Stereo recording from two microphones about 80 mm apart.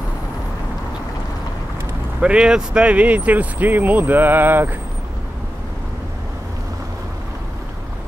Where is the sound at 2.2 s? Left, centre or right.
Centre.